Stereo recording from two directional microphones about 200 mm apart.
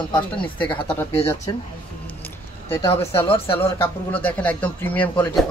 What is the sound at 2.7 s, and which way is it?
Speech, 15° left (ahead or behind).